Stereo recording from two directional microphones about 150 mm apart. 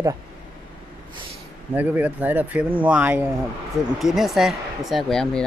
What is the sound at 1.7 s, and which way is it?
Speech, 10° right (ahead or behind).